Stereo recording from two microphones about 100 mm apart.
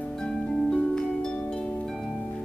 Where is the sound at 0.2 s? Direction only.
5° left (ahead or behind).